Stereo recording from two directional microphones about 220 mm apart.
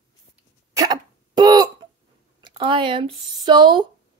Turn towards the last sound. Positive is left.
turn(degrees=-20)  # may be behind; listen again after turning